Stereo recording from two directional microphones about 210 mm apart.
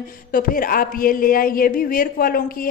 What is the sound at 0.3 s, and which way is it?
A man's voice, 40° left (ahead or behind).